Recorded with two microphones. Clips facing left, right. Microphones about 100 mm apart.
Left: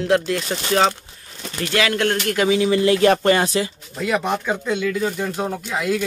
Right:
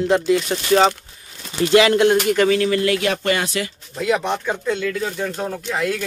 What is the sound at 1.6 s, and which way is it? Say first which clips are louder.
Speech: right 7 dB; 20° right (ahead or behind).